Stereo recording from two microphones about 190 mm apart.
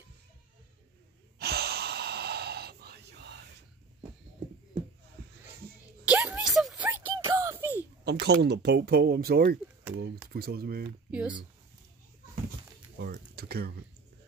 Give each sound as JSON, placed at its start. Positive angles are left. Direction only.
{"t": 1.4, "sound": "gasp", "side_deg": -55}
{"t": 6.0, "sound": "a sound", "side_deg": -10}
{"t": 8.0, "sound": "speech", "side_deg": -60}
{"t": 11.1, "sound": "speech", "side_deg": -5}
{"t": 12.9, "sound": "speech", "side_deg": -55}